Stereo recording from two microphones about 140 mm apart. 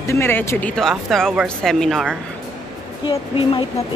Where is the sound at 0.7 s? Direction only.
Centre (ahead or behind).